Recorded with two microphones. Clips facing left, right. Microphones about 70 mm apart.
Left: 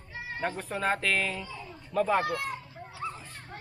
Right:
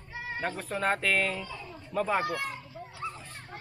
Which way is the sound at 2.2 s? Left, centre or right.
Right.